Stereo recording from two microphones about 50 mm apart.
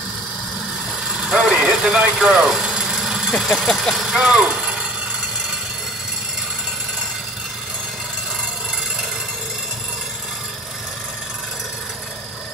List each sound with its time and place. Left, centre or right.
1.2 s vehicle: right
2.0 s speech: right; by 4.2 s centre
4.2 s speech: centre